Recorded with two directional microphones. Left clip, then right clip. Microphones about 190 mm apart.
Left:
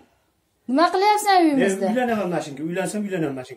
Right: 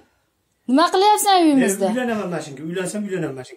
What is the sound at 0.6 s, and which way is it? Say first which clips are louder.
Speech: right 3 dB; 45° right (ahead or behind).